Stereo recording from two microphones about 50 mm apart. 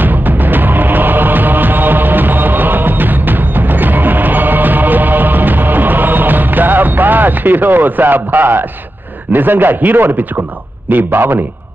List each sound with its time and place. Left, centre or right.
0.0 s music: right
9.3 s a man's voice: right